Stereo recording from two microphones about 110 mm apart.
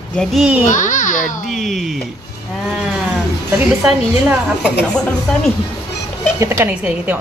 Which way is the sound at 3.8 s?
10° right (ahead or behind).